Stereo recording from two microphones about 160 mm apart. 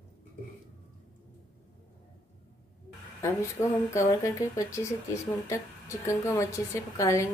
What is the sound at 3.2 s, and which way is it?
Speech, 20° left (ahead or behind).